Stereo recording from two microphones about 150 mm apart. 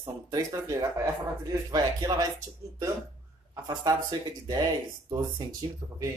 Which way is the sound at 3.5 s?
25° right (ahead or behind).